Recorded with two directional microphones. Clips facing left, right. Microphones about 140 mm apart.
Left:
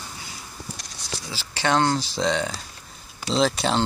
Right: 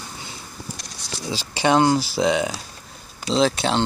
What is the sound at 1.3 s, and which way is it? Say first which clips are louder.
Speech: right 4 dB; 15° right (ahead or behind).